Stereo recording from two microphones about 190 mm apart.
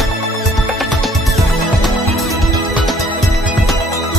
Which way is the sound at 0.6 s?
Centre (ahead or behind).